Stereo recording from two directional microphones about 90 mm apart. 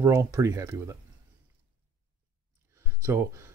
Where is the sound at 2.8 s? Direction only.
30° right (ahead or behind).